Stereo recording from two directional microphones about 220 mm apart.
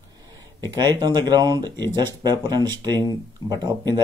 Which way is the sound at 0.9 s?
20° right (ahead or behind).